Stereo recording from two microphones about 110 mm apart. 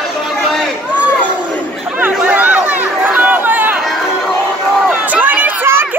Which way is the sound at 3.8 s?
Centre (ahead or behind).